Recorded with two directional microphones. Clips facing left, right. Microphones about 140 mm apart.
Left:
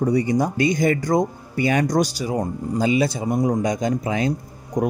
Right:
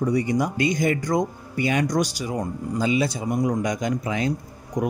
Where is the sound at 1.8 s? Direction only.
30° left (ahead or behind).